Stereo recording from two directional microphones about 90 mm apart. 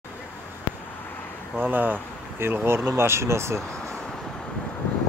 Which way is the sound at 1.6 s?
20° right (ahead or behind).